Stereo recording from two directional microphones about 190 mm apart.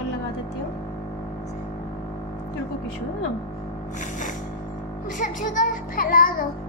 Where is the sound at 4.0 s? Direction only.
40° left (ahead or behind).